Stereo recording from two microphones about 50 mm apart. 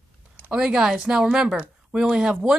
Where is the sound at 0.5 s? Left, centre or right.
Centre.